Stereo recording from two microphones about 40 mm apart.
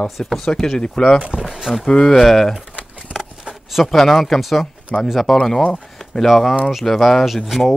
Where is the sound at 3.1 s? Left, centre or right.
Centre.